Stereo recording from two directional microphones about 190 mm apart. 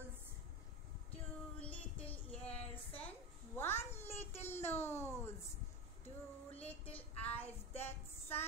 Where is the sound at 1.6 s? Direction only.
10° left (ahead or behind).